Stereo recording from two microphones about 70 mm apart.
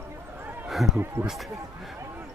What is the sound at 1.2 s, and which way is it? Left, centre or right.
Speech, right.